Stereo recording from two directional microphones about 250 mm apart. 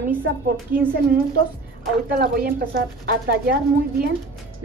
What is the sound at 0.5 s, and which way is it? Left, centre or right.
Speech, centre.